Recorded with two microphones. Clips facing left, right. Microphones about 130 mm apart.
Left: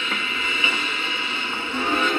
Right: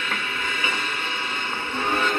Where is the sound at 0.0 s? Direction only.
50° right (ahead or behind).